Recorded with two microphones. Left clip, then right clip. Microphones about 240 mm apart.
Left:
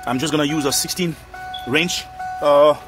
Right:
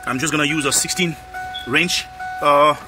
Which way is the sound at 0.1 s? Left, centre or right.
Left.